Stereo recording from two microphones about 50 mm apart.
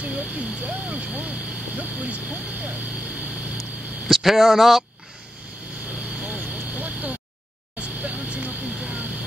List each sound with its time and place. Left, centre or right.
0.0 s a sound: right
1.8 s speech: right
4.1 s speech: centre
6.4 s vehicle: right